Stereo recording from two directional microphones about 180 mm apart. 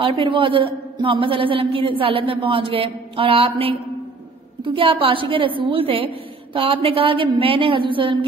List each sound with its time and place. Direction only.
0.0 s a man's voice: 30° right (ahead or behind)